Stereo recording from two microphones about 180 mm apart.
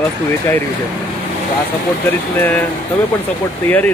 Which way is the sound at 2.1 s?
10° left (ahead or behind).